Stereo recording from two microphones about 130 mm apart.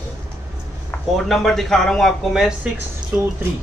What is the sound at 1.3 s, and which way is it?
Speech, centre (ahead or behind).